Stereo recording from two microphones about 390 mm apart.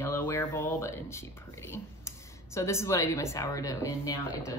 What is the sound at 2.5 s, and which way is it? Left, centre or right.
Speech, centre.